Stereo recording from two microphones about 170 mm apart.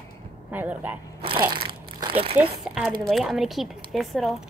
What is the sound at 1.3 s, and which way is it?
Crumpling, 30° right (ahead or behind).